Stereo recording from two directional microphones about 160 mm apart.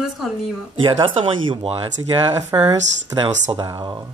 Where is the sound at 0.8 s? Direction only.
30° right (ahead or behind).